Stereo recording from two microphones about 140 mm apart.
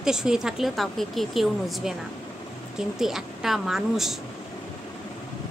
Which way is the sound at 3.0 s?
5° right (ahead or behind).